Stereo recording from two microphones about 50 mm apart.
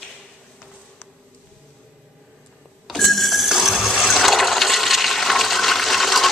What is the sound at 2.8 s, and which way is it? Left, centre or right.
Printer, centre.